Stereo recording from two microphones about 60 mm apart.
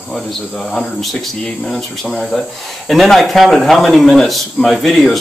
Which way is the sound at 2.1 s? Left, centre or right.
Centre.